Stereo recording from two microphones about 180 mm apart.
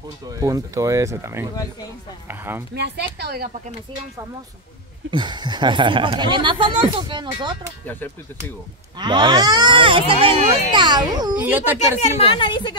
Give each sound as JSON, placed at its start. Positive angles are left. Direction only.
{"t": 0.3, "sound": "speech", "side_deg": -20}
{"t": 2.7, "sound": "speech", "side_deg": -65}
{"t": 5.1, "sound": "speech", "side_deg": -25}
{"t": 7.8, "sound": "speech", "side_deg": 10}
{"t": 8.9, "sound": "speech", "side_deg": -25}
{"t": 11.3, "sound": "speech", "side_deg": -10}
{"t": 12.0, "sound": "speech", "side_deg": 30}